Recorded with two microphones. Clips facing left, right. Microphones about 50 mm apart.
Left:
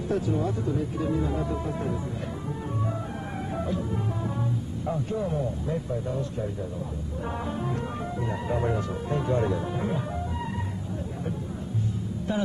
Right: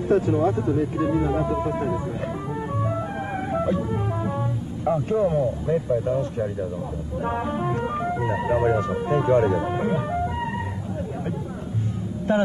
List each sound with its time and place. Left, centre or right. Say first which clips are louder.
0.1 s speech: right 8 dB; right
3.5 s music: right 6 dB; right
4.8 s speech: right 9 dB; right
7.2 s speech: right 6 dB; right